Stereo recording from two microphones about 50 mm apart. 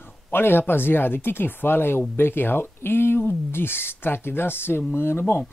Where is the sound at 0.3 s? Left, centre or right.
Left.